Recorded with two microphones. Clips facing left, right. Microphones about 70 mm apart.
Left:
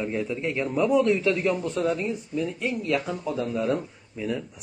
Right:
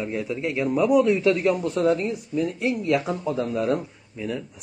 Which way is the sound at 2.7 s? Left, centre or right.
Centre.